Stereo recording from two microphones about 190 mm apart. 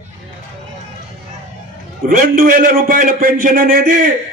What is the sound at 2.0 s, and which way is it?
A man's voice, 45° right (ahead or behind).